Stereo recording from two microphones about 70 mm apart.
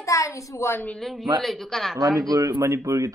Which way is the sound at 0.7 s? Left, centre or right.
Left.